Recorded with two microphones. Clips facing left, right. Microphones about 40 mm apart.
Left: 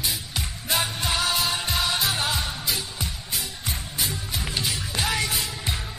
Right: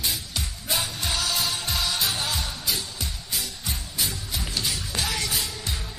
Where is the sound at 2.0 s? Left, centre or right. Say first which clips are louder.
Left 2 dB; left.